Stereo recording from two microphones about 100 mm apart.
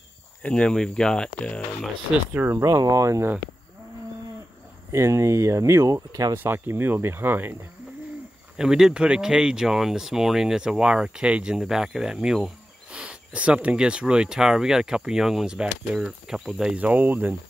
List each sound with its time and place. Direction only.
0.4 s speech: 10° left (ahead or behind)
2.4 s speech: 30° right (ahead or behind)
4.9 s speech: 30° right (ahead or behind)
6.3 s speech: 20° right (ahead or behind)
8.5 s speech: 5° right (ahead or behind)